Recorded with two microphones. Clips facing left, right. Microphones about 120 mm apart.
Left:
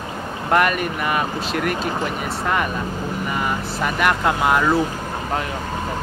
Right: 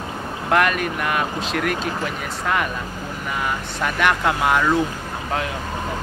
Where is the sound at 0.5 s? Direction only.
Centre (ahead or behind).